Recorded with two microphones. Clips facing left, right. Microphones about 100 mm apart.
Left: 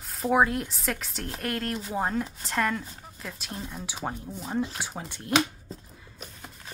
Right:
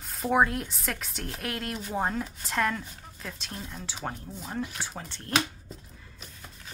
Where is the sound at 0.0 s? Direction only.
Centre (ahead or behind).